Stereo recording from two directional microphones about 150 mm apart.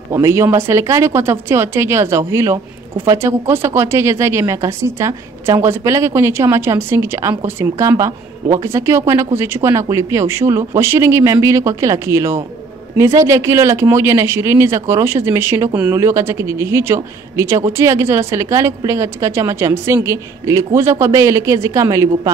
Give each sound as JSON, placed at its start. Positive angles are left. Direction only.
{"t": 0.1, "sound": "a woman's voice", "side_deg": -20}